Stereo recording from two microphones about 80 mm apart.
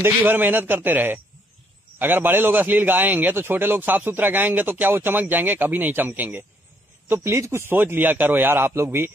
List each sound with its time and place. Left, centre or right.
0.2 s a man's voice: right
7.1 s a man's voice: right